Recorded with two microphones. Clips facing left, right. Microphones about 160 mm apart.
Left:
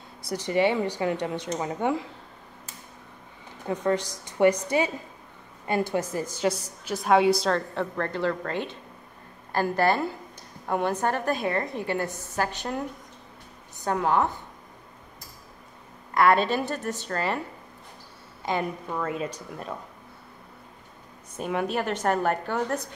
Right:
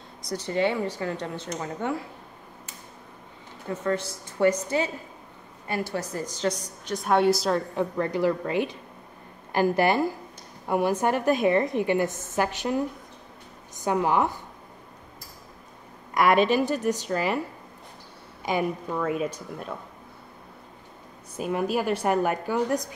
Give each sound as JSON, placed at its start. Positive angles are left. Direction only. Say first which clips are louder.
{"t": 0.3, "sound": "a woman's voice", "louder": "left 2 dB", "side_deg": 10}
{"t": 3.6, "sound": "a woman's voice", "louder": "left 2 dB", "side_deg": 15}
{"t": 6.3, "sound": "a woman's voice", "louder": "left 1 dB", "side_deg": 10}
{"t": 13.8, "sound": "a woman's voice", "louder": "right 1 dB", "side_deg": -15}
{"t": 16.2, "sound": "a woman's voice", "louder": "right 1 dB", "side_deg": -15}
{"t": 18.4, "sound": "a woman's voice", "louder": "right 2 dB", "side_deg": -10}
{"t": 21.4, "sound": "a woman's voice", "louder": "right 1 dB", "side_deg": -5}